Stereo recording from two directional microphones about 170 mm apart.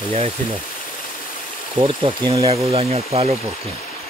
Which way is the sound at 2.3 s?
30° right (ahead or behind).